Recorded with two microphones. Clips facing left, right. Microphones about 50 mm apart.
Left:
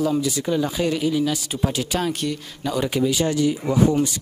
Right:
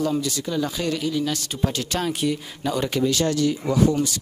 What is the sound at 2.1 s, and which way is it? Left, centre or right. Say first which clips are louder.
Speech: right 2 dB; centre.